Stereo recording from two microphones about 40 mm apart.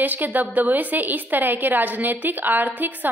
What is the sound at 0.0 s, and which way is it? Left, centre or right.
A woman's voice, right.